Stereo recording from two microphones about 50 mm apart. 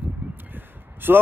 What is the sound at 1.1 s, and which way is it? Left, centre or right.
Speech, right.